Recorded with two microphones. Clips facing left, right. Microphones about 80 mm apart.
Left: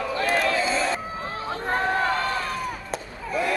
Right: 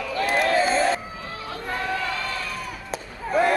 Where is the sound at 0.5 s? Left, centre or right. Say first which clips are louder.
Right 4 dB; right.